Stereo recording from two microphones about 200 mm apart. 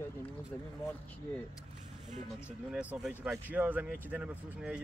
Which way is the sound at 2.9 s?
5° right (ahead or behind).